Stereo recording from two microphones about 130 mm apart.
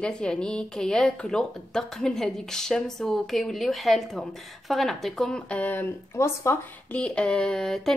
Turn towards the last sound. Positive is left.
turn(degrees=5)  # may be behind; listen again after turning